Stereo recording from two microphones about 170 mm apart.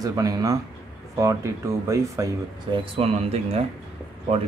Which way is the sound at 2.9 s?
35° right (ahead or behind).